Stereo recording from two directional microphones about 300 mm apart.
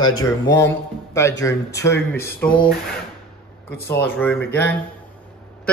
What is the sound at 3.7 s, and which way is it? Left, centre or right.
Speech, left.